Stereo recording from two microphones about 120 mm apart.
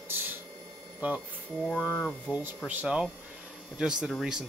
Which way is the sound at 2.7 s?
10° right (ahead or behind).